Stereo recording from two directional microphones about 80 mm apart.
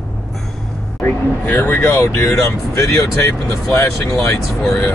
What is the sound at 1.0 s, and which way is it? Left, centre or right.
Speech, left.